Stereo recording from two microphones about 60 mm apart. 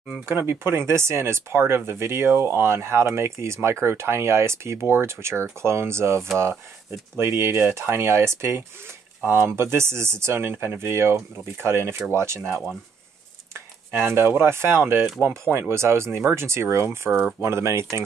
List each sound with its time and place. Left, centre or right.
0.3 s speech: right
13.5 s speech: right
17.1 s speech: centre
17.4 s speech: right